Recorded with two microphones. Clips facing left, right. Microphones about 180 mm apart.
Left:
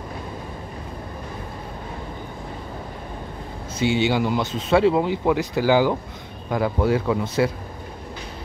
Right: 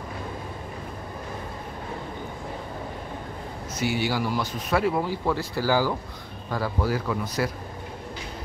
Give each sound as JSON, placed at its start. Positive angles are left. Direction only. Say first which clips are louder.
{"t": 3.7, "sound": "speech", "louder": "left 6 dB", "side_deg": 25}